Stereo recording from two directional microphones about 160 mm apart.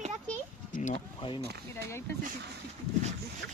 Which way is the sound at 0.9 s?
30° left (ahead or behind).